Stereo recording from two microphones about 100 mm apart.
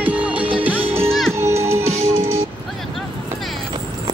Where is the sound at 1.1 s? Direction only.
5° left (ahead or behind).